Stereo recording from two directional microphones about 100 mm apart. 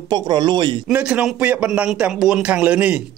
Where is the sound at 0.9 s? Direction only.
10° right (ahead or behind).